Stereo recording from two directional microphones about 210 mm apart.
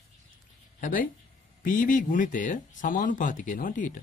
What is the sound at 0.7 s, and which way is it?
Speech, 40° left (ahead or behind).